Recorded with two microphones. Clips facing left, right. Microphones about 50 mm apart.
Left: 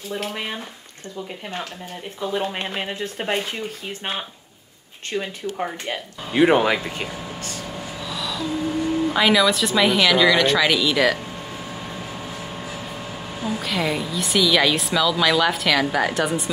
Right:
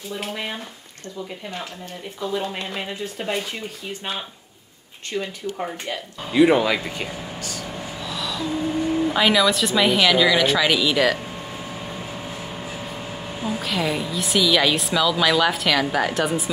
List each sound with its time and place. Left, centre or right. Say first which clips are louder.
2.3 s speech: left 2 dB; left
5.1 s speech: left 1 dB; left
7.7 s gasp: even; centre
9.1 s speech: left 1 dB; centre
13.4 s speech: even; centre